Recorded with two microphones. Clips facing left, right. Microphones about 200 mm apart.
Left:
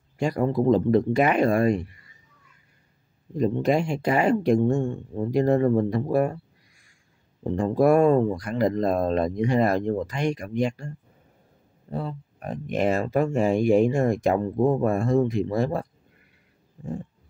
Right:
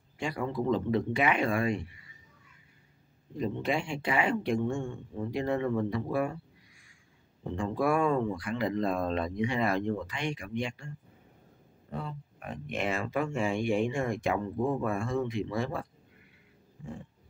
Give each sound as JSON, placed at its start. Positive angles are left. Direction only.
{"t": 0.2, "sound": "speech", "side_deg": 40}
{"t": 3.3, "sound": "speech", "side_deg": 40}
{"t": 7.4, "sound": "speech", "side_deg": 40}